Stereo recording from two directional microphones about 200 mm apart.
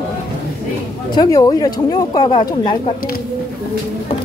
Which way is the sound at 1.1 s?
20° left (ahead or behind).